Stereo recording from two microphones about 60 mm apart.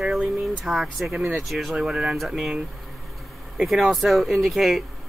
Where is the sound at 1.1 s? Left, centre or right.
Centre.